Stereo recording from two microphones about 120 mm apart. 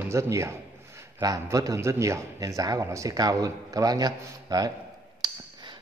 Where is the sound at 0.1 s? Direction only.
25° right (ahead or behind).